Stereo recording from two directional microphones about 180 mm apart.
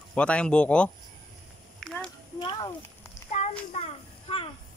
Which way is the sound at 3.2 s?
40° left (ahead or behind).